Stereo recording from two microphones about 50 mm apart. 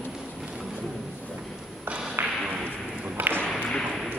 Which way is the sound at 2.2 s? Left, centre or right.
Right.